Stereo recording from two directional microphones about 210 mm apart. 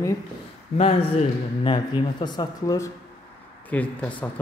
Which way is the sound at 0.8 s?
25° left (ahead or behind).